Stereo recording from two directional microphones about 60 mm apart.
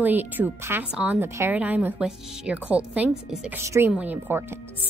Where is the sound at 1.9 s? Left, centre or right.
Centre.